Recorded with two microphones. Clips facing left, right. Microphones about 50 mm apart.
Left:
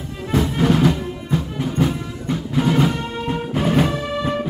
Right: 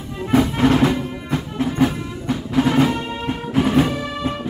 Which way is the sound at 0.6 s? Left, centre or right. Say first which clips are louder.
Right 1 dB; centre.